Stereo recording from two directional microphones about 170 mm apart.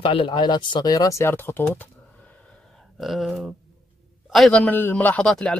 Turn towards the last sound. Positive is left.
turn(degrees=5)  # may be behind; listen again after turning